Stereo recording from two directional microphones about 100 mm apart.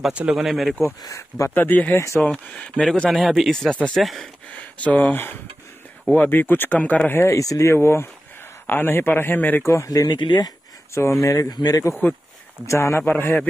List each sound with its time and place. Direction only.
0.0 s speech: 10° right (ahead or behind)
1.0 s speech: 30° left (ahead or behind); by 4.3 s centre (ahead or behind)
4.5 s speech: 15° left (ahead or behind)
9.7 s speech: 35° left (ahead or behind)
11.0 s speech: 30° left (ahead or behind)
12.6 s speech: 25° left (ahead or behind)